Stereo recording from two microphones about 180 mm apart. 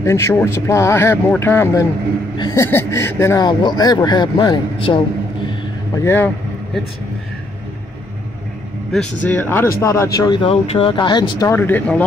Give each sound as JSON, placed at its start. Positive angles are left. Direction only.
{"t": 0.0, "sound": "speech", "side_deg": 15}
{"t": 6.0, "sound": "speech", "side_deg": 10}
{"t": 8.9, "sound": "speech", "side_deg": 5}